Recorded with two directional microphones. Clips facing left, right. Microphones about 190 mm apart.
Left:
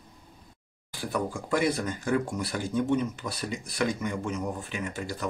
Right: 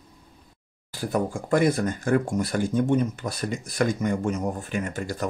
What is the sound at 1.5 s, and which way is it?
Speech, 50° right (ahead or behind).